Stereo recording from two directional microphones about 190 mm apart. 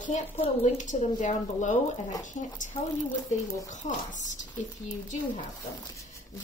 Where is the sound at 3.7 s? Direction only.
40° left (ahead or behind).